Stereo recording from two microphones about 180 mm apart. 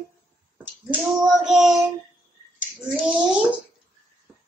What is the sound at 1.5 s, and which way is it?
Speech, centre (ahead or behind).